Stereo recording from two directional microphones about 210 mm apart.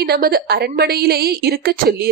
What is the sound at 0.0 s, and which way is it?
A woman's voice, 50° right (ahead or behind).